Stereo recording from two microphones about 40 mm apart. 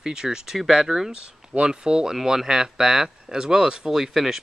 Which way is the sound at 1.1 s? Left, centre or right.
Right.